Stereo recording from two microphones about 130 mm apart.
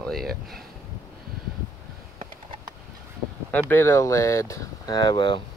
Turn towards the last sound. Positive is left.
turn(degrees=35)  # may be behind; listen again after turning